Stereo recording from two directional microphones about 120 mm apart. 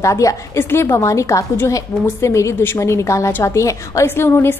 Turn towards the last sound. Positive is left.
turn(degrees=20)  # may be behind; listen again after turning